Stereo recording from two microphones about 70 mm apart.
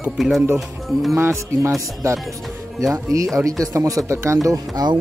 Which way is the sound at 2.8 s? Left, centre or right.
Right.